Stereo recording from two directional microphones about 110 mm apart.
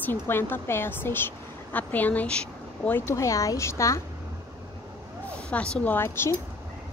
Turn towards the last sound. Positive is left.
turn(degrees=25)  # may be behind; listen again after turning